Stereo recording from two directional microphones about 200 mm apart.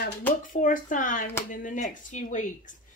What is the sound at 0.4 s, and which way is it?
Speech, 40° left (ahead or behind).